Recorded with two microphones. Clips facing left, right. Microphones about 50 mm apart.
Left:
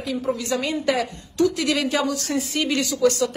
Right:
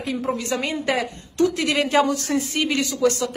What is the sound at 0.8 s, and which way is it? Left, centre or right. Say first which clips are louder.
A woman's voice: left 1 dB; right.